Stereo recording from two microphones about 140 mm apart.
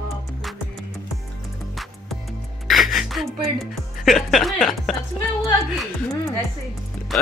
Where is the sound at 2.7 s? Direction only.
Centre (ahead or behind).